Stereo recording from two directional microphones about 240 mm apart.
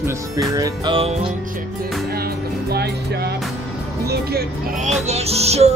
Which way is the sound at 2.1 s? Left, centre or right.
Right.